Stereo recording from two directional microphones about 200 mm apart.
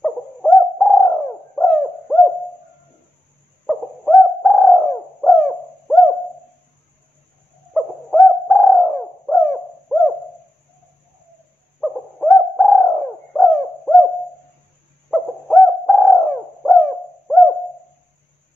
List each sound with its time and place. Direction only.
0.0 s bird: centre (ahead or behind)
3.6 s bird: centre (ahead or behind)
7.7 s bird: centre (ahead or behind)
11.8 s bird: centre (ahead or behind)
15.0 s bird: centre (ahead or behind)